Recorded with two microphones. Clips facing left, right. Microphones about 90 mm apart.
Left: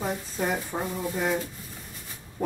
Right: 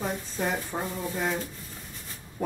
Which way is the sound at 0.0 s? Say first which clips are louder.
Left 1 dB; 5° left (ahead or behind).